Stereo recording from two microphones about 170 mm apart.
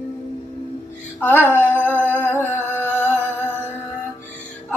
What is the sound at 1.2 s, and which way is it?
Music, 10° left (ahead or behind).